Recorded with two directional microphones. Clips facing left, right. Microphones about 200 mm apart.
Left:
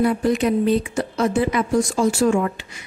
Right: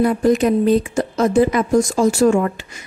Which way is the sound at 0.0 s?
45° right (ahead or behind).